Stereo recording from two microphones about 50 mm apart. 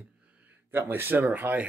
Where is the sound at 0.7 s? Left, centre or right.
Right.